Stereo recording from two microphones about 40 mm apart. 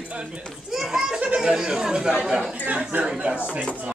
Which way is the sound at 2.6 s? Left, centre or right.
Right.